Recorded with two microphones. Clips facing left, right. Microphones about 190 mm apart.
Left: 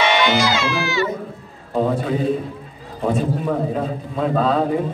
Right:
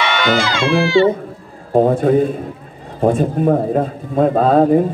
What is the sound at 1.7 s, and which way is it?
A man's voice, 50° right (ahead or behind).